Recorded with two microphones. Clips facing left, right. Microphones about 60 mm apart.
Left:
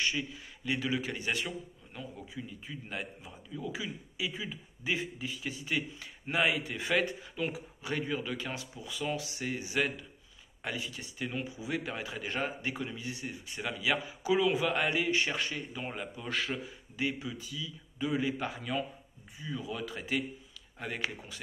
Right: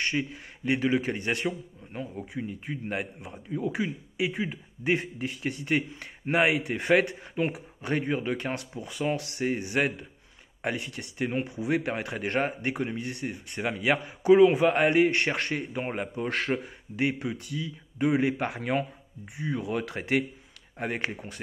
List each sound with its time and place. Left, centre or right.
0.0 s a man's voice: right
20.8 s a man's voice: right